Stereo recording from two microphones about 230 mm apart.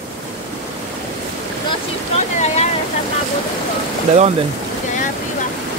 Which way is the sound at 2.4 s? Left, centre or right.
Left.